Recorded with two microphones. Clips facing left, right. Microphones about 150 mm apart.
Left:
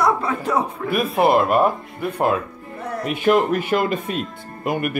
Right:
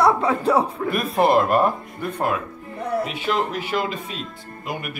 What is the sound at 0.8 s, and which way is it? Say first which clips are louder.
Speech: left 5 dB; centre (ahead or behind).